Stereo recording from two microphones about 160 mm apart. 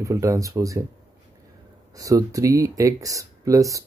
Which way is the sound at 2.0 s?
20° right (ahead or behind).